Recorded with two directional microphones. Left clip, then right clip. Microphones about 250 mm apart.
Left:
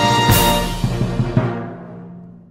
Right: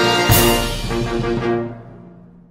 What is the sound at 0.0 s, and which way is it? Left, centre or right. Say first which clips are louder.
Music: even; centre.